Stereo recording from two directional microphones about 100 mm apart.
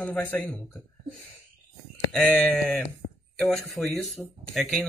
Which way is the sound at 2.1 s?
10° left (ahead or behind).